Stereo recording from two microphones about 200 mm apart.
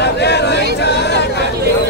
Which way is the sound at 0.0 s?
55° left (ahead or behind).